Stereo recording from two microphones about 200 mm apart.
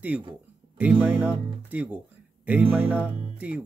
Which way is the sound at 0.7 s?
10° right (ahead or behind).